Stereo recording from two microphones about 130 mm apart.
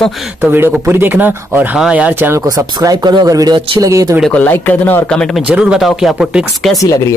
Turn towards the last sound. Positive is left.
turn(degrees=25)  # may be behind; listen again after turning